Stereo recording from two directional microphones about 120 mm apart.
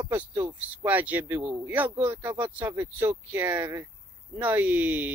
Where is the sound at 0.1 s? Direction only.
15° right (ahead or behind).